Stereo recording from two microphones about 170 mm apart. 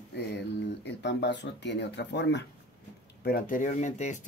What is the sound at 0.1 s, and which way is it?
Speech, 85° left.